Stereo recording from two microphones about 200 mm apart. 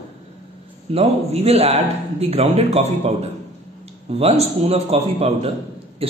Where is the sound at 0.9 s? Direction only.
30° right (ahead or behind).